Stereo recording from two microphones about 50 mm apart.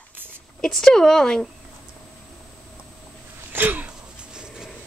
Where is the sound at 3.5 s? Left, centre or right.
Right.